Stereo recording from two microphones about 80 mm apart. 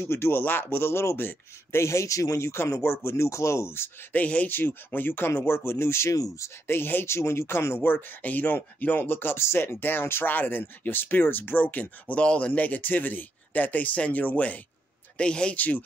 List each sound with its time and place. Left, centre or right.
0.0 s speech: left
6.1 s speech: left
6.7 s speech: left